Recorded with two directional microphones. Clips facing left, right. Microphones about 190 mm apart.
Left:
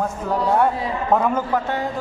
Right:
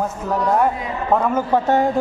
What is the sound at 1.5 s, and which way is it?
Speech, 25° right (ahead or behind).